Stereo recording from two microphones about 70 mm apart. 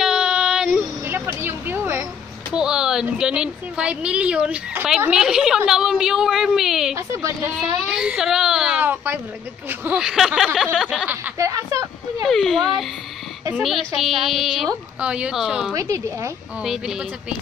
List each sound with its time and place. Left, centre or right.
0.0 s child singing: centre
1.0 s a sound: right
2.5 s a woman's voice: centre
7.0 s a woman's voice: right
7.5 s speech: centre
8.7 s a woman's voice: right
9.9 s a woman's voice: centre
10.6 s a sound: centre
11.3 s a woman's voice: right
12.3 s a woman's voice: centre
15.0 s speech: centre
15.7 s a woman's voice: right
16.6 s speech: centre